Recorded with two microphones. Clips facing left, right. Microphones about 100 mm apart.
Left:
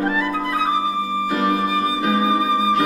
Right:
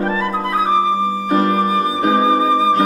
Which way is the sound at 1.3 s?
40° right (ahead or behind).